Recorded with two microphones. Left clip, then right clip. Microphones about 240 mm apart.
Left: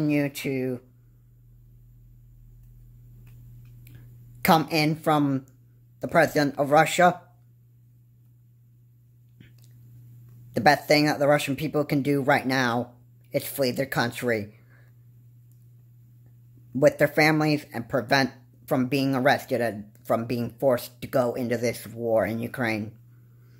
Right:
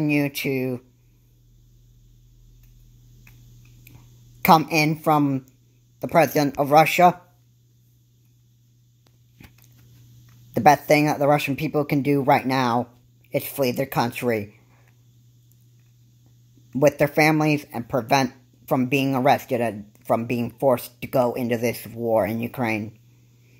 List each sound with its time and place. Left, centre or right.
0.0 s speech: centre
4.4 s speech: centre
10.5 s a sound: centre
10.9 s speech: centre
16.7 s speech: centre